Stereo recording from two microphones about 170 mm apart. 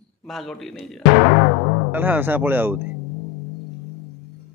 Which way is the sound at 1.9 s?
10° right (ahead or behind).